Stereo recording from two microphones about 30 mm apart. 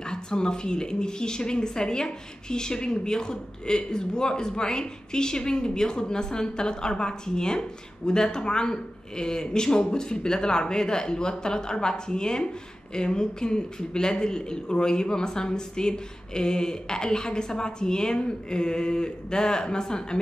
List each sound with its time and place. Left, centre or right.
0.0 s a woman's voice: left